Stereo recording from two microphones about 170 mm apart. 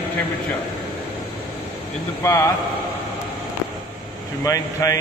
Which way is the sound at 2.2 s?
15° left (ahead or behind).